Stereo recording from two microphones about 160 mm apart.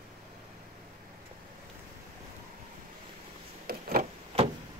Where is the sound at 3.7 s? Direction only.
65° right (ahead or behind).